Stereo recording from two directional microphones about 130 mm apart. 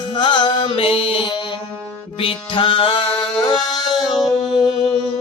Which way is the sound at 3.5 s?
35° left (ahead or behind).